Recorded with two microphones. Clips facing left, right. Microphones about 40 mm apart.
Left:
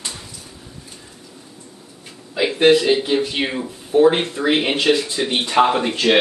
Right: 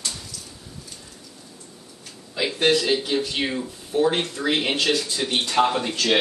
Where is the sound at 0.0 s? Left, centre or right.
Left.